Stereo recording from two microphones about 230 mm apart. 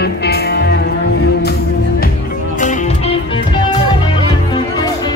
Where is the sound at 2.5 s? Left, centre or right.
Left.